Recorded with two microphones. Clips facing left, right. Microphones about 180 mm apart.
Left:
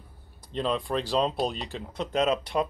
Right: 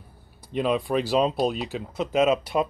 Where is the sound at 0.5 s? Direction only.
10° right (ahead or behind).